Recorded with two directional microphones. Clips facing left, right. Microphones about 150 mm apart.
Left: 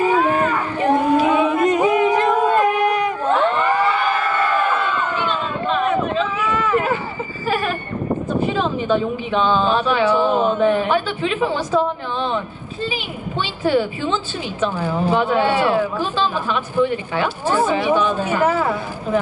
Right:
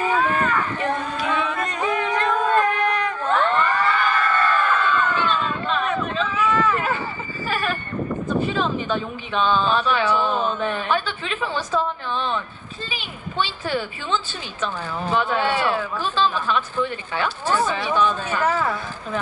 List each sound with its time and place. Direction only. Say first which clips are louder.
0.0 s a sound: left 4 dB; 15° left (ahead or behind)
7.4 s sheep: left 4 dB; 15° left (ahead or behind)
9.3 s a woman's voice: left 2 dB; 15° left (ahead or behind)